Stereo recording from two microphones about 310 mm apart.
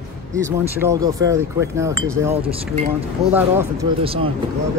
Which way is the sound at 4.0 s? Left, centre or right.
Centre.